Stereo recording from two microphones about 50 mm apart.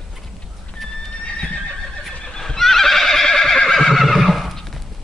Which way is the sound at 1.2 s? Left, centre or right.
Left.